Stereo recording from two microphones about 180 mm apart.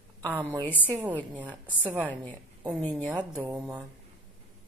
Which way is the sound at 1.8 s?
10° right (ahead or behind).